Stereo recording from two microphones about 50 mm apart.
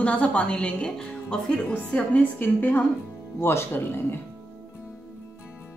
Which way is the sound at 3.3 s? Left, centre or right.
Left.